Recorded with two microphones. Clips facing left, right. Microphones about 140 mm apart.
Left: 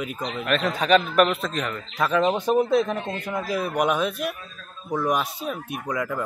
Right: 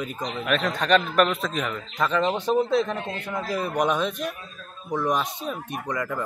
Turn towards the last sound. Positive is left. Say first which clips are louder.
# left 1 dB
turn(degrees=5)  # may be behind; listen again after turning